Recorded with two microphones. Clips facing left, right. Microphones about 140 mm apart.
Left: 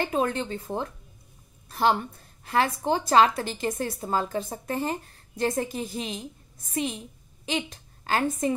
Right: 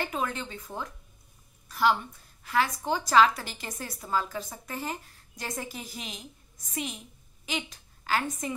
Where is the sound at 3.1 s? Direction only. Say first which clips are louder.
Left 1 dB; 25° left (ahead or behind).